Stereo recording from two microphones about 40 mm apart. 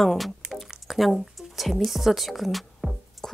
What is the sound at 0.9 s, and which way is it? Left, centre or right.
Speech, centre.